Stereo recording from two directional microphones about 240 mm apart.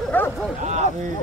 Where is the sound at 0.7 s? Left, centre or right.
Right.